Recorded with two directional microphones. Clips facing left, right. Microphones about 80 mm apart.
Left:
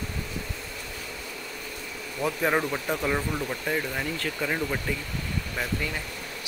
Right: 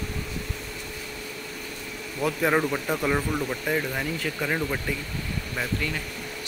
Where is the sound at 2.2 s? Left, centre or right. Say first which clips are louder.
Right 2 dB; centre.